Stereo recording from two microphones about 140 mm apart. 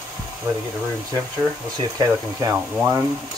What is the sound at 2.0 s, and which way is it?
Speech, 25° right (ahead or behind).